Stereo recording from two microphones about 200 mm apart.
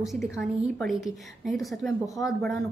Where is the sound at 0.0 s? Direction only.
Centre (ahead or behind).